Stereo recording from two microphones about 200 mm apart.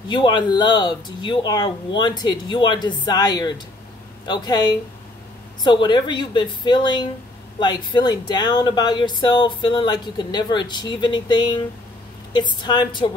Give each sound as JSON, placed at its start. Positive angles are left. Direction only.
{"t": 0.1, "sound": "speech", "side_deg": 20}